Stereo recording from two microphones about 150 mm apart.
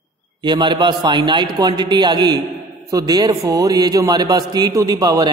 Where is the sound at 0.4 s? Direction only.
30° right (ahead or behind).